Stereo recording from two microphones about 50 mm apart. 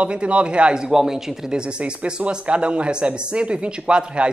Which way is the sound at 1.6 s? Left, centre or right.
Centre.